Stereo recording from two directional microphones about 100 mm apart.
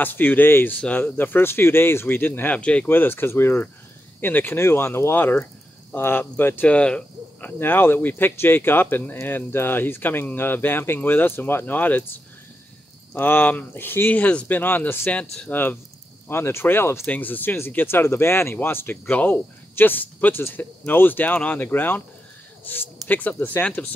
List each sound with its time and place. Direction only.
0.0 s speech: 20° left (ahead or behind)
13.1 s speech: 20° left (ahead or behind)